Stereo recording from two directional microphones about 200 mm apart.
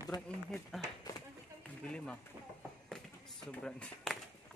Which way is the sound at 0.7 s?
Centre (ahead or behind).